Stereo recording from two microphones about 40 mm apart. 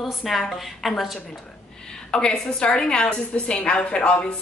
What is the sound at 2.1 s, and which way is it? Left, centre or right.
A woman's voice, centre.